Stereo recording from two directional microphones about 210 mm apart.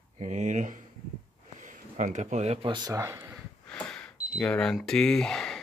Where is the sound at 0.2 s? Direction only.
35° right (ahead or behind); by 3.3 s 15° right (ahead or behind).